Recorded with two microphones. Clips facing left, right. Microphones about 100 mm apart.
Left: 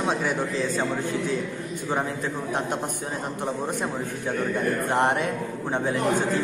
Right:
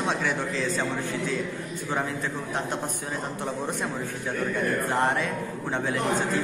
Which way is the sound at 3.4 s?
15° left (ahead or behind).